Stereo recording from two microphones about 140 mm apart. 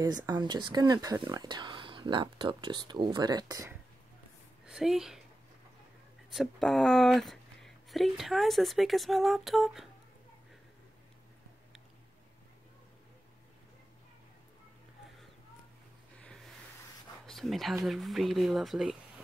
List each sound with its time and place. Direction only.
0.3 s speech: 30° right (ahead or behind)
4.6 s a woman's voice: 5° right (ahead or behind)
6.3 s speech: centre (ahead or behind)
16.2 s a sound: 5° left (ahead or behind)
17.3 s speech: centre (ahead or behind)